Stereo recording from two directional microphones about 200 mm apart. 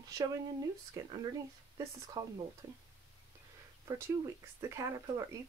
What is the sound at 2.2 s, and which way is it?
Speech, 15° right (ahead or behind).